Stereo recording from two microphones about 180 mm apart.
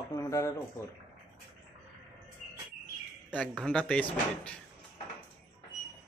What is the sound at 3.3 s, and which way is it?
Speech, 5° left (ahead or behind).